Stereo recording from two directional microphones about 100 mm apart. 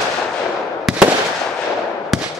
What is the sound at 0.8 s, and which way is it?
Fireworks, 5° right (ahead or behind).